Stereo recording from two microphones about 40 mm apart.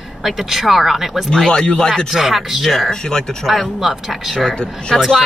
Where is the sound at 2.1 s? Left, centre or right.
Centre.